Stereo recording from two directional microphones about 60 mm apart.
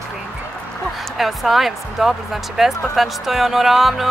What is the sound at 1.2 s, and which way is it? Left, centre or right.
Speech, centre.